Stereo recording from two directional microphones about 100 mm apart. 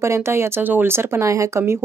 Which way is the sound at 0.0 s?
25° right (ahead or behind).